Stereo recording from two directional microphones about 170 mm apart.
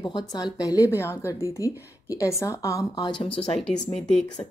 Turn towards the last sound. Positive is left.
turn(degrees=35)  # may be behind; listen again after turning